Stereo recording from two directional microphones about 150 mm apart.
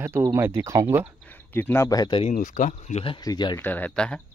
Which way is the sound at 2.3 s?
60° left (ahead or behind).